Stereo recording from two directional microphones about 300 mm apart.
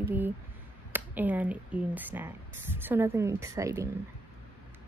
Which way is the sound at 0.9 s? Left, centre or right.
Centre.